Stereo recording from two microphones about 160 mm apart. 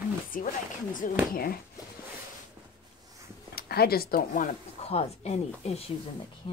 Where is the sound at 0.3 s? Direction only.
55° left (ahead or behind).